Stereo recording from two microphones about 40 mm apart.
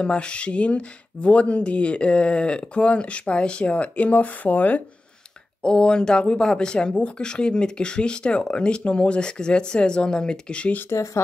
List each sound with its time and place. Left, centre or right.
0.0 s speech: left
5.6 s speech: left